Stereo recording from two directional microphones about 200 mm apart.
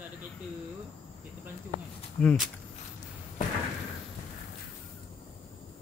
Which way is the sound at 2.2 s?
5° left (ahead or behind).